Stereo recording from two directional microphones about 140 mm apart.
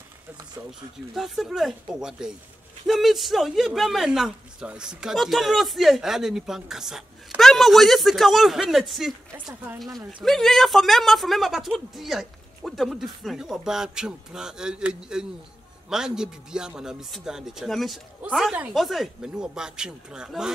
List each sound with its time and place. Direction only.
0.7 s speech: centre (ahead or behind)
9.3 s speech: 20° right (ahead or behind)
9.9 s speech: centre (ahead or behind)